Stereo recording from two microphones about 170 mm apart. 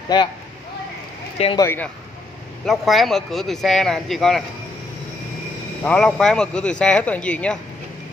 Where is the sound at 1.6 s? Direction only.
15° left (ahead or behind).